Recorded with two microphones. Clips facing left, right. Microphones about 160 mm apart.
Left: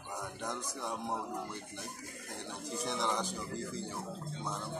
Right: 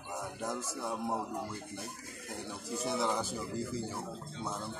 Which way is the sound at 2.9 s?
5° right (ahead or behind).